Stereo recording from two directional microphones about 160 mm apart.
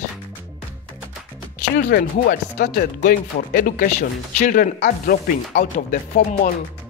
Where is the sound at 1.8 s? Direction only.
60° left (ahead or behind).